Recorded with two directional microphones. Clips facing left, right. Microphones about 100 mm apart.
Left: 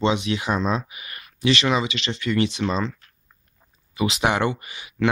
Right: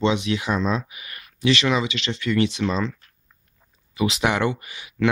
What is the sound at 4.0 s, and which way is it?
Speech, 5° left (ahead or behind).